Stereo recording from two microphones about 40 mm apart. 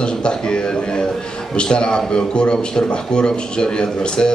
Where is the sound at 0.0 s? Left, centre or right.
Left.